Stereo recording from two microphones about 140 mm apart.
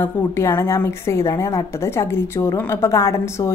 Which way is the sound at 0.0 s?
20° left (ahead or behind).